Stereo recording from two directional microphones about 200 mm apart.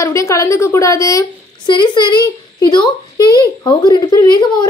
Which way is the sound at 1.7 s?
20° left (ahead or behind).